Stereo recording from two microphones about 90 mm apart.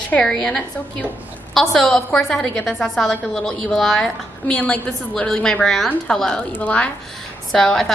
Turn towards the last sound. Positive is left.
turn(degrees=5)  # may be behind; listen again after turning